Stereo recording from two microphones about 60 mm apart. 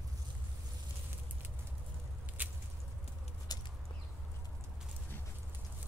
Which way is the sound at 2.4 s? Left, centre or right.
Right.